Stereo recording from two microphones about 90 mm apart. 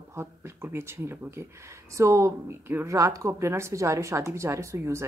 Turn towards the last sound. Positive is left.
turn(degrees=-30)  # may be behind; listen again after turning